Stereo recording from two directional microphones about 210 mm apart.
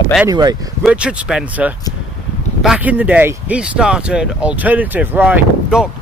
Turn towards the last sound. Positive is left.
turn(degrees=-5)  # may be behind; listen again after turning